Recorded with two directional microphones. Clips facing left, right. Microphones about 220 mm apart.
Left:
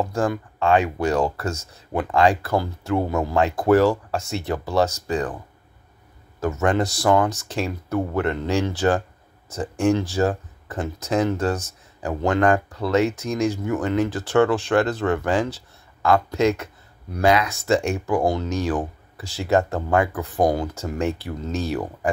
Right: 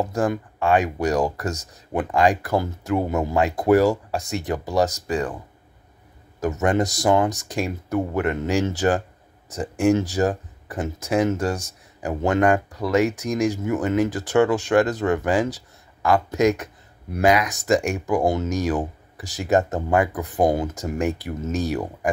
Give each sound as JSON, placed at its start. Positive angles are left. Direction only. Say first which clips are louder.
{"t": 0.0, "sound": "speech", "louder": "even", "side_deg": -20}
{"t": 6.4, "sound": "speech", "louder": "even", "side_deg": -15}